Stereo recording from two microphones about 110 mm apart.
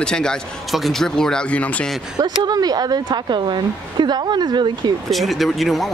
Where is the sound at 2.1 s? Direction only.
40° right (ahead or behind).